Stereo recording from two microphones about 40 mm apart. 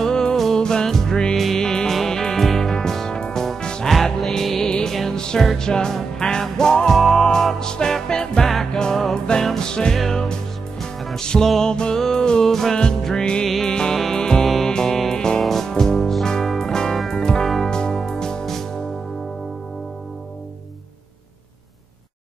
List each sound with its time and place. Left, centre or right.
0.0 s music: centre
3.8 s music: centre
10.8 s music: centre
11.1 s music: centre
11.7 s music: left
15.4 s music: centre